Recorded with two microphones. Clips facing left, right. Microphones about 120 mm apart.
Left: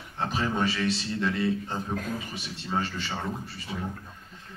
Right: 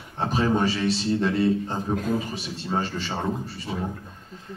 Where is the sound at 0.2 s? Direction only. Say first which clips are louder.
Right 5 dB; 35° right (ahead or behind).